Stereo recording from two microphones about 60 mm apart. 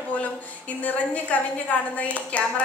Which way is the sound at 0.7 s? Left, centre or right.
Left.